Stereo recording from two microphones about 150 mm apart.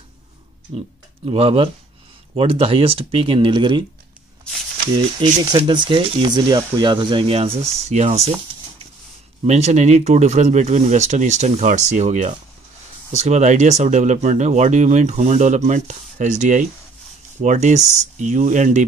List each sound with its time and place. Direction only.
1.2 s speech: 40° right (ahead or behind)
5.2 s speech: 35° right (ahead or behind)
9.5 s speech: 50° right (ahead or behind)